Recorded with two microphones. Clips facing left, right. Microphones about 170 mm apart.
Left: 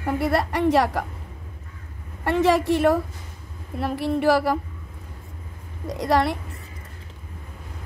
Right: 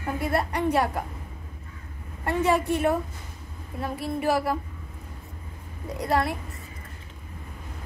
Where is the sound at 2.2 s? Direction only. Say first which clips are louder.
Left 4 dB; 80° left.